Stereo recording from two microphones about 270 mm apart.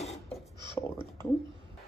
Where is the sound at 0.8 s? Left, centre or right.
Centre.